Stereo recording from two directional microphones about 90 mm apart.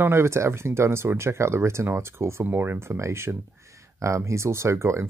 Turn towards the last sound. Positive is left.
turn(degrees=-30)  # may be behind; listen again after turning